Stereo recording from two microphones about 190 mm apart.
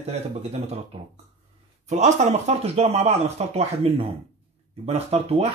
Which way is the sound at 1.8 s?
35° right (ahead or behind).